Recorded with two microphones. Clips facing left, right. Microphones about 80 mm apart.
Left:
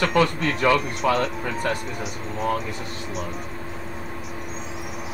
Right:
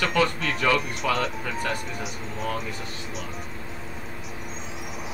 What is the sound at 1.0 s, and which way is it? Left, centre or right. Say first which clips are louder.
Speech: left 5 dB; centre.